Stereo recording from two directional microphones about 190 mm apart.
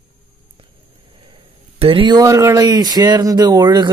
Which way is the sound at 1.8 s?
30° right (ahead or behind).